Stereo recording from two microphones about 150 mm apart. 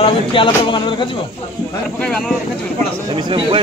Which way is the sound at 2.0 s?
5° left (ahead or behind).